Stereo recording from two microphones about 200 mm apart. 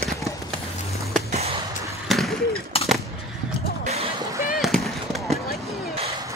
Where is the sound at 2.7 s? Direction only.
30° left (ahead or behind).